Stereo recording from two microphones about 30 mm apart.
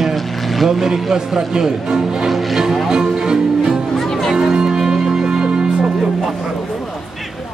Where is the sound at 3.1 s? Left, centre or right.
Right.